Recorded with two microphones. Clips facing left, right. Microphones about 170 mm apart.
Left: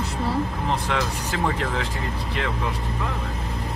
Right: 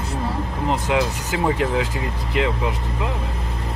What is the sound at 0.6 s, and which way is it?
Speech, 15° right (ahead or behind).